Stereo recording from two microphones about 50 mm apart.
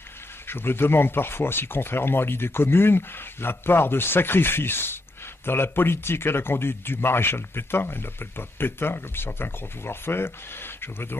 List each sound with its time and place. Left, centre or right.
0.5 s speech: left